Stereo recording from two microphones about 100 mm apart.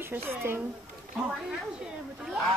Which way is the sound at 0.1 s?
25° right (ahead or behind).